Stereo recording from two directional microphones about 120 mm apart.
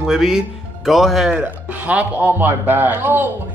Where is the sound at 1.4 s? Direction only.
15° right (ahead or behind).